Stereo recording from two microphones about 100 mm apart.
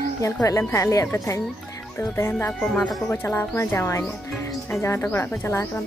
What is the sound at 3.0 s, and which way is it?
Speech, 25° left (ahead or behind).